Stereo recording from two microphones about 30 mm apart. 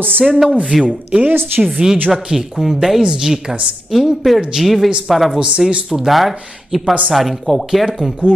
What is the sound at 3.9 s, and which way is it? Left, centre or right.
Speech, centre.